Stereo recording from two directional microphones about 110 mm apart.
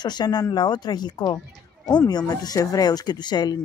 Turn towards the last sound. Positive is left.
turn(degrees=40)  # may be behind; listen again after turning